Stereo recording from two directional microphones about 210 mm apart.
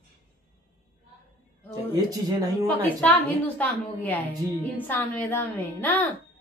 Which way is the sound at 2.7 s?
10° left (ahead or behind).